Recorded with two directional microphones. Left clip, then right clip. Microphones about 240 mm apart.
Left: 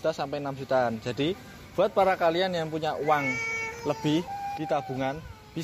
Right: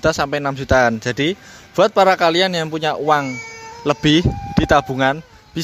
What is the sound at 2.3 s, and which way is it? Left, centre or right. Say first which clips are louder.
Speech: right 10 dB; right.